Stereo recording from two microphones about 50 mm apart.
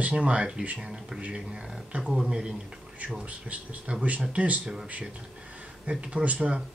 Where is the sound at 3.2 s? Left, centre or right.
Right.